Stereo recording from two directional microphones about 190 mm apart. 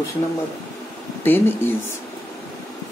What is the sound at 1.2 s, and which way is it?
Speech, 10° left (ahead or behind).